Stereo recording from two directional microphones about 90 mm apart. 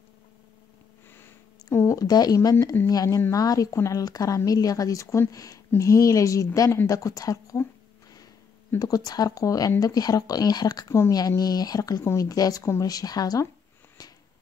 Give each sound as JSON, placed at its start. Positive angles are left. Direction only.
{"t": 1.6, "sound": "speech", "side_deg": 35}
{"t": 8.7, "sound": "speech", "side_deg": 45}